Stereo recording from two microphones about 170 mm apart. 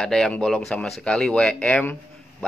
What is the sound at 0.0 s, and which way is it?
Speech, 5° left (ahead or behind).